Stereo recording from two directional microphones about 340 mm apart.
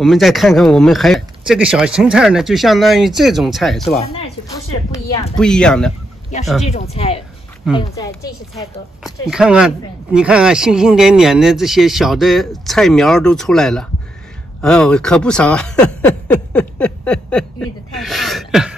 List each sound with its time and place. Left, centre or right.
0.0 s speech: centre
4.1 s speech: centre
6.6 s a woman's voice: centre
9.0 s speech: centre
16.5 s a sound: centre